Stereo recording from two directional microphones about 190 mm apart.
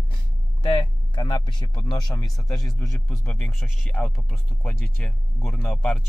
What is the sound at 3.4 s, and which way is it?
Speech, centre (ahead or behind).